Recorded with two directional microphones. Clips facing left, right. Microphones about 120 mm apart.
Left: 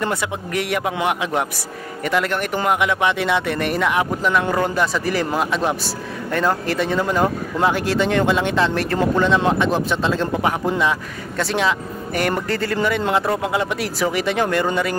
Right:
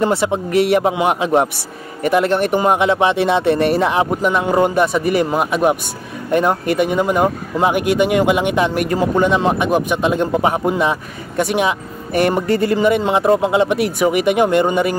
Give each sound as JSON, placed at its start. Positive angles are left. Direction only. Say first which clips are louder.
{"t": 0.0, "sound": "speech", "louder": "right 7 dB", "side_deg": -25}